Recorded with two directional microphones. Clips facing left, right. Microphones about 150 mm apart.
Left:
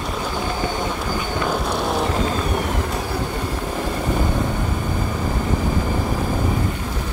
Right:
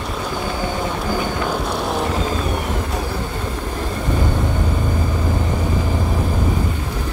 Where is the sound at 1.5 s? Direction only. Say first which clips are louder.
Even; centre (ahead or behind).